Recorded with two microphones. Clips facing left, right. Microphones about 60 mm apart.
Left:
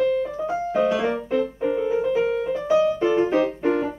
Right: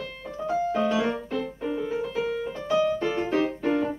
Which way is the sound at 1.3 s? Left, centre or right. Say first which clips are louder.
Left 7 dB; left.